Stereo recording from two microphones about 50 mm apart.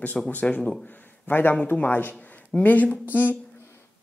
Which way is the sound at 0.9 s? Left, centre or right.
Left.